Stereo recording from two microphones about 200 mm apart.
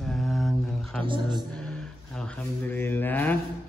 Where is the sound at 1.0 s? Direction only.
25° right (ahead or behind).